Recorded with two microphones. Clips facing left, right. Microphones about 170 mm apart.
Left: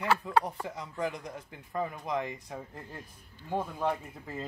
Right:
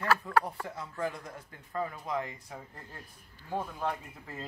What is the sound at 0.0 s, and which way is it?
Speech, 20° left (ahead or behind).